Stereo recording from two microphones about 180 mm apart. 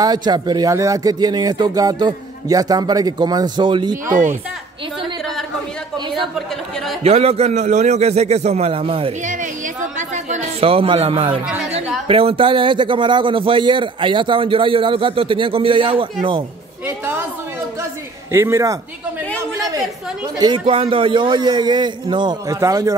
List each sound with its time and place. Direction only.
0.0 s a man's voice: 20° right (ahead or behind)
3.9 s speech: 45° right (ahead or behind)
7.0 s a man's voice: 35° right (ahead or behind)
9.2 s a sound: 45° right (ahead or behind); by 11.4 s 30° right (ahead or behind)
12.1 s a man's voice: 30° right (ahead or behind)
16.8 s music: 10° right (ahead or behind)
18.3 s a man's voice: 15° right (ahead or behind)
20.3 s a man's voice: 25° right (ahead or behind)